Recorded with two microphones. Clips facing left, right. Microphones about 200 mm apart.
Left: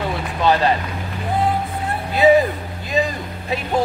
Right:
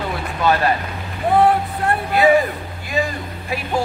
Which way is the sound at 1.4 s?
70° right (ahead or behind).